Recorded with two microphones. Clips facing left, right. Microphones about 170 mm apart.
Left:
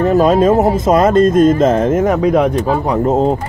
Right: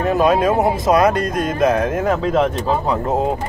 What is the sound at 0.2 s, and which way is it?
Speech, 20° left (ahead or behind).